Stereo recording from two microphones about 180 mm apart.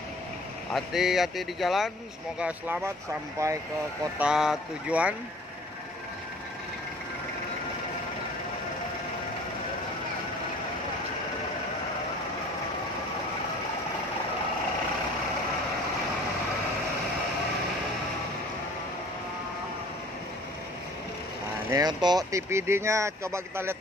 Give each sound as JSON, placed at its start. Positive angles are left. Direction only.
{"t": 0.7, "sound": "speech", "side_deg": 0}
{"t": 4.2, "sound": "speech", "side_deg": -5}
{"t": 21.6, "sound": "speech", "side_deg": -20}